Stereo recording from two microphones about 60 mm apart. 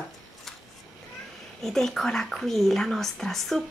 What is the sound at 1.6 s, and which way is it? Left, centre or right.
Speech, centre.